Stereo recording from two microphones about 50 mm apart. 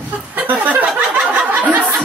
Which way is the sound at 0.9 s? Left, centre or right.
Right.